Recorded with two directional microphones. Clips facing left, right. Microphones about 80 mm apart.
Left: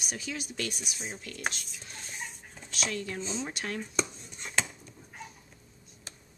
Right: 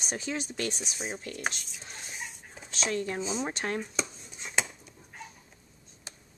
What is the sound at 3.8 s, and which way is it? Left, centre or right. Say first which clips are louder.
Dishes: left 2 dB; centre.